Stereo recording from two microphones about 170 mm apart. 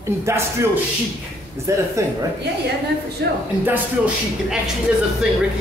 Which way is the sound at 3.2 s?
75° right (ahead or behind).